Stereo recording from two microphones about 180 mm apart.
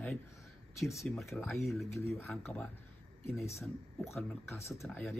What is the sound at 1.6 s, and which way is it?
Speech, centre (ahead or behind).